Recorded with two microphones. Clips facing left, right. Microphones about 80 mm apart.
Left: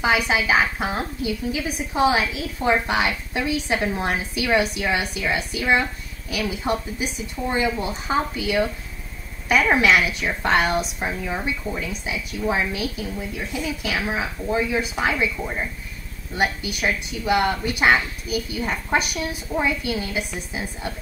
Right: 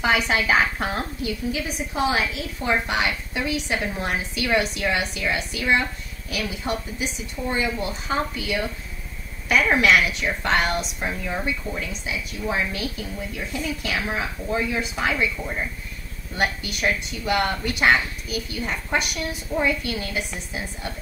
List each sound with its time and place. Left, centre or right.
0.0 s speech: centre
1.2 s a woman's voice: left
7.8 s a woman's voice: left
13.8 s a woman's voice: centre